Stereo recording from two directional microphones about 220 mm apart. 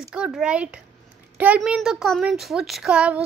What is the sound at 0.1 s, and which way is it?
A child's voice, 5° right (ahead or behind).